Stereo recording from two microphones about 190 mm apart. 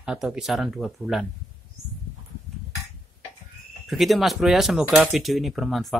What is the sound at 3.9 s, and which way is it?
Speech, centre (ahead or behind).